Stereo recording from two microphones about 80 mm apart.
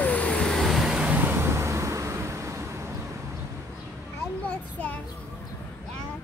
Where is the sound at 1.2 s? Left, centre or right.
Right.